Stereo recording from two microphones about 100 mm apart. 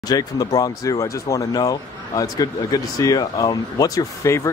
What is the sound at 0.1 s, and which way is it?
Speech, 40° left (ahead or behind).